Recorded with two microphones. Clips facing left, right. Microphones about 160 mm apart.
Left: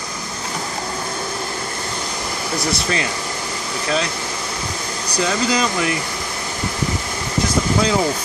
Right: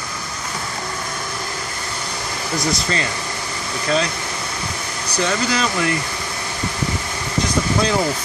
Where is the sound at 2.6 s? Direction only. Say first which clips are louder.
Even; 5° left (ahead or behind).